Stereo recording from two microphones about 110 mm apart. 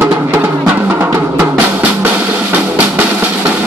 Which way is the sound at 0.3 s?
20° right (ahead or behind).